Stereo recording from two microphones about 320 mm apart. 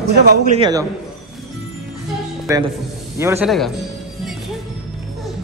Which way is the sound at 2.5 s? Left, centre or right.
Centre.